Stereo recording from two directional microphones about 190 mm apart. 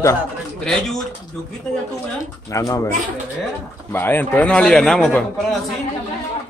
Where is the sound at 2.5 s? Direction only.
15° left (ahead or behind).